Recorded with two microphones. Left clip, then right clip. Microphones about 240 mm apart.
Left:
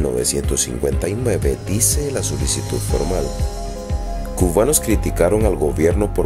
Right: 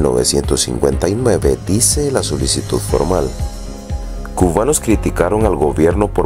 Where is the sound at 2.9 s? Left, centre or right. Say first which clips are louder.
Right 6 dB; centre.